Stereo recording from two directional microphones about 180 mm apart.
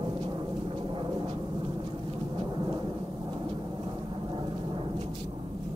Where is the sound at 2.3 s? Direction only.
25° right (ahead or behind).